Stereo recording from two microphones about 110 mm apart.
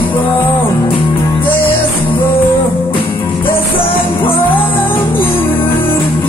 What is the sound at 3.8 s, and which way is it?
Music, 55° left (ahead or behind).